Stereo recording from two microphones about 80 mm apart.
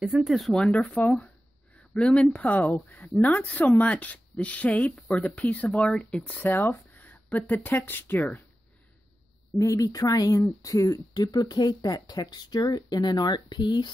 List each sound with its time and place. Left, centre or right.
0.0 s speech: centre
0.5 s speech: centre
6.4 s speech: left
9.6 s speech: left